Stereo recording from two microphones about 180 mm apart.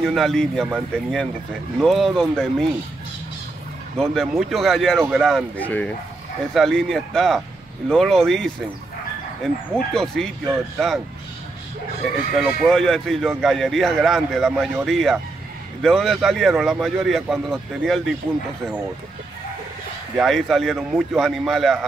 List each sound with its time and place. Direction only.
0.0 s speech: centre (ahead or behind)
4.0 s speech: centre (ahead or behind)
9.9 s speech: 5° left (ahead or behind)
12.0 s speech: centre (ahead or behind)
20.2 s speech: centre (ahead or behind)